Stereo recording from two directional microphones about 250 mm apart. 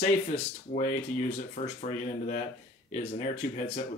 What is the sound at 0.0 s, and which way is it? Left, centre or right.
Speech, left.